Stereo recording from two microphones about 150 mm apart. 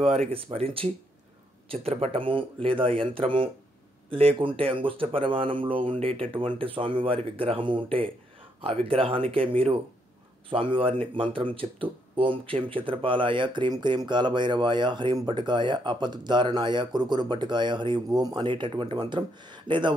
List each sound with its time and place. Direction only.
0.0 s speech: 45° right (ahead or behind)